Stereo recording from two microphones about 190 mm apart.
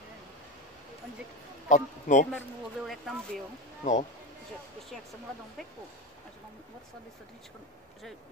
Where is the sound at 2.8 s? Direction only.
Centre (ahead or behind).